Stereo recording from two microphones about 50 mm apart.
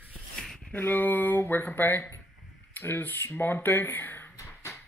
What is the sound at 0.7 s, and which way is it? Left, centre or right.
Speech, left.